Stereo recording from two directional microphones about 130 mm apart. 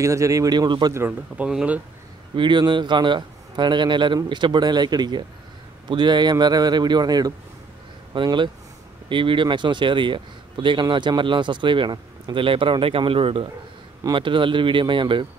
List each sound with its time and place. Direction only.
0.0 s speech: 25° right (ahead or behind)
0.9 s speech: 15° right (ahead or behind)
2.3 s a man's voice: 35° right (ahead or behind)